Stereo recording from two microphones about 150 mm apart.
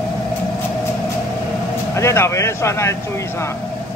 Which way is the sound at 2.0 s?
20° left (ahead or behind).